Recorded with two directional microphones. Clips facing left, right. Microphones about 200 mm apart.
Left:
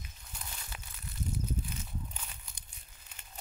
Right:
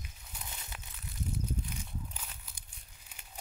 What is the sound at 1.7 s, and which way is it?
Walk, 10° right (ahead or behind).